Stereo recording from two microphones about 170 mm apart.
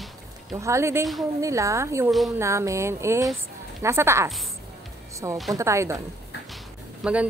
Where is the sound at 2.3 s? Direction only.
15° right (ahead or behind).